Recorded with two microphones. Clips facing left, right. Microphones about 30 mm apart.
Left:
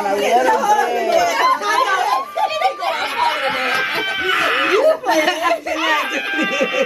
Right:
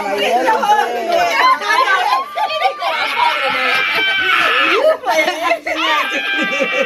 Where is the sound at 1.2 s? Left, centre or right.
Right.